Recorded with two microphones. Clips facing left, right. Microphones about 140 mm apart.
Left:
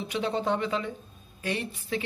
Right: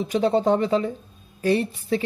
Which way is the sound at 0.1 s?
40° right (ahead or behind).